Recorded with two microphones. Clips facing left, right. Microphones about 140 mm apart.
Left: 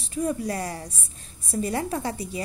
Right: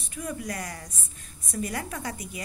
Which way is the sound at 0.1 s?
30° left (ahead or behind).